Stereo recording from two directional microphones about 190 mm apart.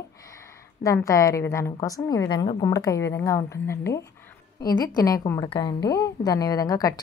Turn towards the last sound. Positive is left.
turn(degrees=20)  # may be behind; listen again after turning